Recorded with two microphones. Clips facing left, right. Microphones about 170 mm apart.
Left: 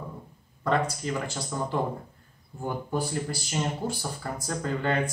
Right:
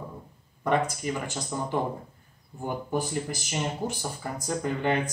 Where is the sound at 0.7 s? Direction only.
15° right (ahead or behind).